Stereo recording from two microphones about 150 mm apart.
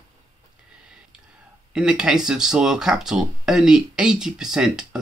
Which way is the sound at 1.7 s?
5° right (ahead or behind).